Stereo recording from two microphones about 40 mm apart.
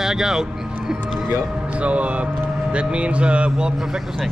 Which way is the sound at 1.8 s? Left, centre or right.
Right.